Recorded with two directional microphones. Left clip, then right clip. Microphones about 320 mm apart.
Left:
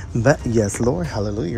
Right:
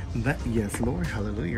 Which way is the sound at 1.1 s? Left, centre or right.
Centre.